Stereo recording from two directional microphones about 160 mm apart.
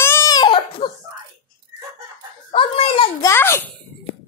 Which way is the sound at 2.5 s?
35° left (ahead or behind).